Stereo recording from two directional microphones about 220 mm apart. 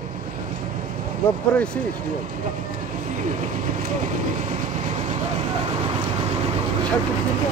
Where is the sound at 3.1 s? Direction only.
35° right (ahead or behind).